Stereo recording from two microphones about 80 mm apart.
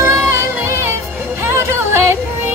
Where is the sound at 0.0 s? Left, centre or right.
Right.